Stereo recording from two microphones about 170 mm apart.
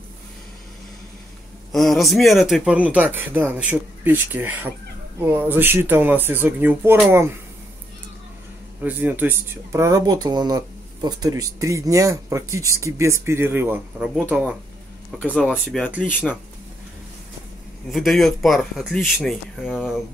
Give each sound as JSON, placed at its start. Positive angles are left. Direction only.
{"t": 1.7, "sound": "speech", "side_deg": 0}
{"t": 8.8, "sound": "speech", "side_deg": -10}
{"t": 15.5, "sound": "speech", "side_deg": 0}
{"t": 17.9, "sound": "speech", "side_deg": 0}